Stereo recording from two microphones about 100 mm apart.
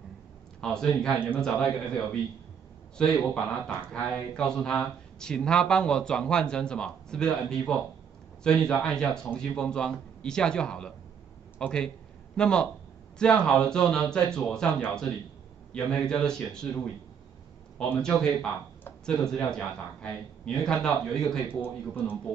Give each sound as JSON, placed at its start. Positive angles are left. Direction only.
{"t": 0.6, "sound": "speech", "side_deg": 5}
{"t": 15.7, "sound": "speech", "side_deg": 10}
{"t": 18.0, "sound": "speech", "side_deg": 5}
{"t": 21.5, "sound": "speech", "side_deg": 20}